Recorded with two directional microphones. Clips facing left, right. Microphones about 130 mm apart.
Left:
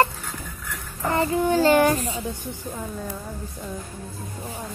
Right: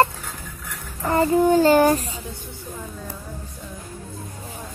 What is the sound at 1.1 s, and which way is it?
Child singing, 35° right (ahead or behind).